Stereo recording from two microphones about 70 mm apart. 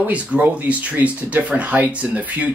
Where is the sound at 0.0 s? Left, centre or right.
Right.